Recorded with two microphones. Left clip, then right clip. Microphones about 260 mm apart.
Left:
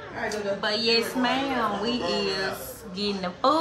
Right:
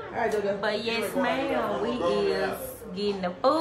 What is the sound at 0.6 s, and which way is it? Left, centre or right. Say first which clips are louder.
A woman's voice: left 4 dB; centre.